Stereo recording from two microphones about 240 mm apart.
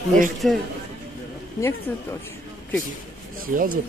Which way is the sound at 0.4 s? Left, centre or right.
Centre.